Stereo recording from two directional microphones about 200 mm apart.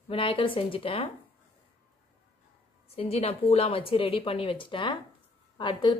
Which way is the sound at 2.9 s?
30° left (ahead or behind).